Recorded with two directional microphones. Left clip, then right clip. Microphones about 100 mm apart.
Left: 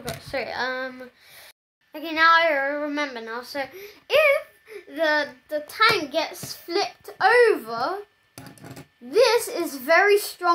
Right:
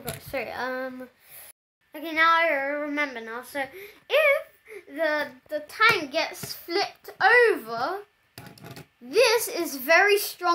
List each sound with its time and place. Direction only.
0.2 s a sound: 30° right (ahead or behind)
1.9 s a child's voice: 30° right (ahead or behind)
3.6 s a child's voice: centre (ahead or behind)
4.1 s a sound: 20° right (ahead or behind)
4.9 s a child's voice: 15° right (ahead or behind)
6.1 s speech: 25° right (ahead or behind)
9.1 s a child's voice: 35° right (ahead or behind)